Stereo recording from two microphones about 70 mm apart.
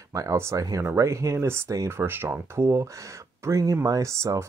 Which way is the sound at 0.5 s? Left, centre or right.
Right.